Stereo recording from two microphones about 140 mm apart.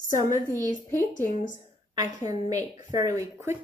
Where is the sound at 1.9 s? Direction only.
25° right (ahead or behind).